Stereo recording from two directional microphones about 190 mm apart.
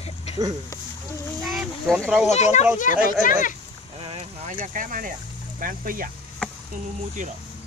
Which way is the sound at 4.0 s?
25° right (ahead or behind).